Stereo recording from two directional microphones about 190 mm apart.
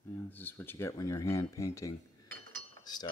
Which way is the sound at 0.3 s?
10° left (ahead or behind).